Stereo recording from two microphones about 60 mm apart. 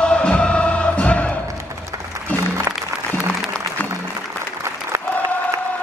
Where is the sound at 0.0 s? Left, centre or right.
Centre.